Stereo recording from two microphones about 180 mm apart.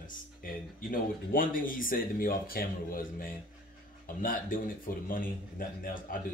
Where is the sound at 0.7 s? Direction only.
50° left (ahead or behind).